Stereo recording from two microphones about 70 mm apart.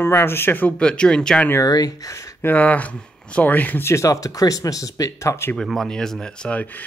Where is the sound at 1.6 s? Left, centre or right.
Left.